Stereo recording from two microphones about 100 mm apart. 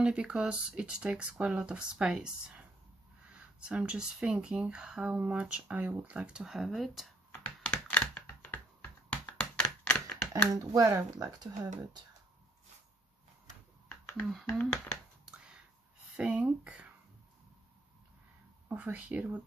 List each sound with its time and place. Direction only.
0.0 s speech: 10° right (ahead or behind)
7.7 s computer keyboard: 10° left (ahead or behind)
9.4 s a sound: 10° left (ahead or behind)
10.3 s speech: 35° right (ahead or behind)
14.4 s speech: 10° left (ahead or behind)
15.3 s whispering: 10° right (ahead or behind)
16.2 s speech: 10° right (ahead or behind)
18.7 s speech: 15° right (ahead or behind)